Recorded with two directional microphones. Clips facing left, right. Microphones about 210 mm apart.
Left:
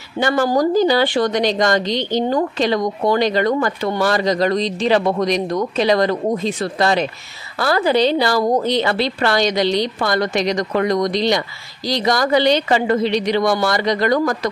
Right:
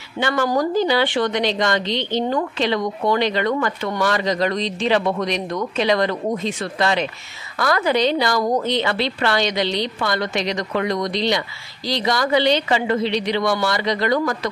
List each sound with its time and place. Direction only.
0.2 s a woman's voice: 35° left (ahead or behind)